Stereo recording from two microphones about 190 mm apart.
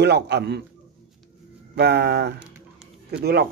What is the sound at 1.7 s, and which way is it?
A man's voice, 60° right (ahead or behind).